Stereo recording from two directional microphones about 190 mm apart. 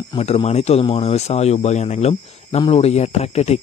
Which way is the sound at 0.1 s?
30° left (ahead or behind).